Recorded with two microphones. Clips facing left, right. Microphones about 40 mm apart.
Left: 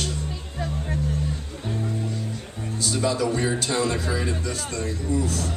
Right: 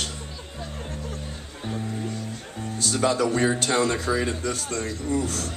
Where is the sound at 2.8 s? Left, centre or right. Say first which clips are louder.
Right 1 dB; right.